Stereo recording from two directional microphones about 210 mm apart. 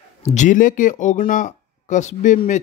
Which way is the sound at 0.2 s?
35° left (ahead or behind).